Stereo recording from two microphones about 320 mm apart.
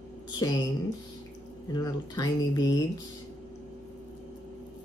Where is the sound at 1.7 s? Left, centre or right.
Centre.